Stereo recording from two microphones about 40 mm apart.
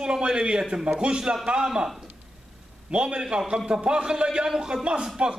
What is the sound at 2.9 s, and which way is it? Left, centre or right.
A man's voice, right.